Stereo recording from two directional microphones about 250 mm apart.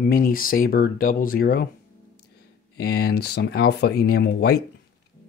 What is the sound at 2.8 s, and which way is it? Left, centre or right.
Speech, left.